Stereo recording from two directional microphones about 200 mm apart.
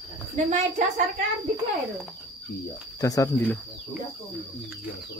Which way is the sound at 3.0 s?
15° left (ahead or behind).